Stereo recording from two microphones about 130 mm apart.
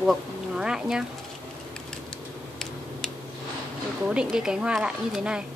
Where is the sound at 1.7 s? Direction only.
5° left (ahead or behind).